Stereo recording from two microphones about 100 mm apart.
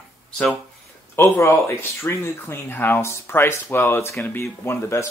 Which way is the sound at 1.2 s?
25° left (ahead or behind).